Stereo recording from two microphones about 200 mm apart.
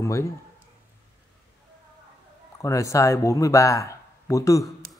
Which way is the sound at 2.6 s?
15° left (ahead or behind).